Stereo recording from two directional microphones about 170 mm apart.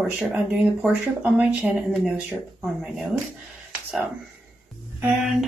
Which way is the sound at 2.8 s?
Centre (ahead or behind).